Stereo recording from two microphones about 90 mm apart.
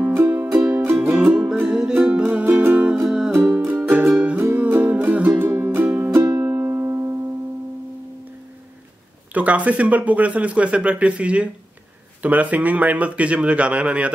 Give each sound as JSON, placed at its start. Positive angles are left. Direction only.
{"t": 0.0, "sound": "music", "side_deg": -25}
{"t": 0.9, "sound": "music", "side_deg": -5}
{"t": 3.1, "sound": "music", "side_deg": -5}
{"t": 3.4, "sound": "music", "side_deg": -15}
{"t": 9.3, "sound": "speech", "side_deg": -15}